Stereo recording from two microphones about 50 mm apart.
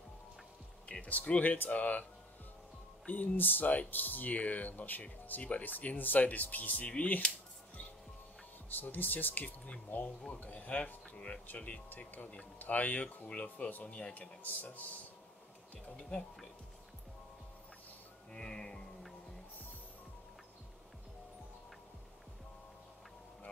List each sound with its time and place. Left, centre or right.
1.0 s speech: left
3.1 s speech: left
8.6 s speech: left
13.3 s speech: left
14.4 s speech: left
16.0 s speech: centre
18.3 s music: centre